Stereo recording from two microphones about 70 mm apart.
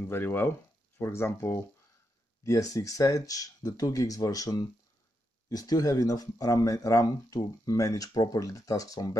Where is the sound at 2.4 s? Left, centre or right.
Left.